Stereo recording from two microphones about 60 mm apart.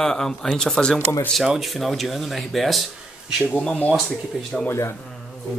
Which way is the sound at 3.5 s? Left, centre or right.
Centre.